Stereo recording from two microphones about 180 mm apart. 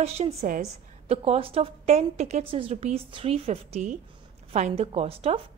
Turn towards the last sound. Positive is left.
turn(degrees=-35)  # may be behind; listen again after turning